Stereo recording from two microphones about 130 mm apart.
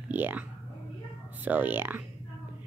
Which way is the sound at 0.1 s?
15° right (ahead or behind).